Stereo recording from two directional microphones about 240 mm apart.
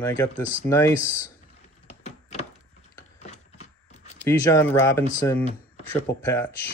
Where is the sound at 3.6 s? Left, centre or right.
Left.